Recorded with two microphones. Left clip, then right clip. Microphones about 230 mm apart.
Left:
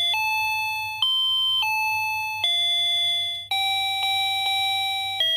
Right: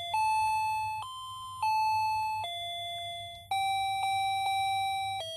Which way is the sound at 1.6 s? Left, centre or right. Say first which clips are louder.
Left 5 dB; left.